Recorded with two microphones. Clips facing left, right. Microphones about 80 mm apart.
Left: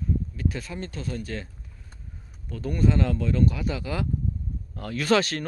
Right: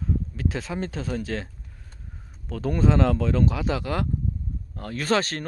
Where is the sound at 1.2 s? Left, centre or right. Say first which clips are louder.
Right 4 dB; right.